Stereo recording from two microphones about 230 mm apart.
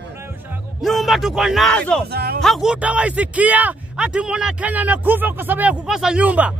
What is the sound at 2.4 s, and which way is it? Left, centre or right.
A man's voice, centre.